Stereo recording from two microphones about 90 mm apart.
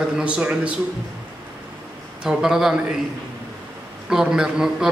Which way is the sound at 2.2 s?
5° right (ahead or behind).